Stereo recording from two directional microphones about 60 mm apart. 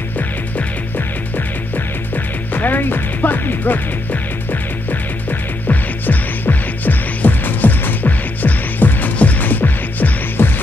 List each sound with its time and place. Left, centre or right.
2.5 s music: left
5.7 s music: left